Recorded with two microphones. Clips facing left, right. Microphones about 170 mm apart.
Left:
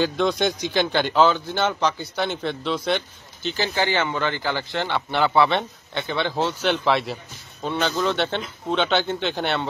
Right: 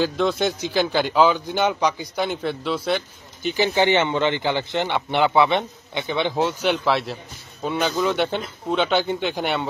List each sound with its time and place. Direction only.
0.0 s speech: centre (ahead or behind)
3.4 s speech: 15° right (ahead or behind)